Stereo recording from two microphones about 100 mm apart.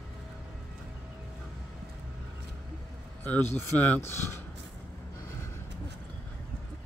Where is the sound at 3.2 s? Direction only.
20° left (ahead or behind).